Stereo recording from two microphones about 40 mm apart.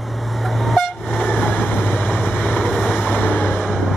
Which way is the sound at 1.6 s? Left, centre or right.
Left.